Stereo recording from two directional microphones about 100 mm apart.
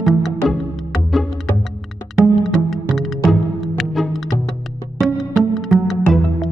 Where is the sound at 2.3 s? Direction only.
Centre (ahead or behind).